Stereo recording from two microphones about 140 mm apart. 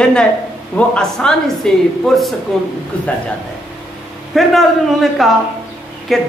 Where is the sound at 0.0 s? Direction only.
5° left (ahead or behind).